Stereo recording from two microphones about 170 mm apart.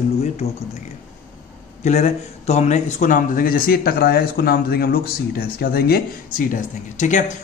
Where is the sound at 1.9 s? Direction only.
40° left (ahead or behind).